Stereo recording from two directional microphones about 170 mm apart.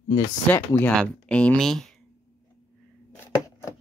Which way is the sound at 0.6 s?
10° left (ahead or behind).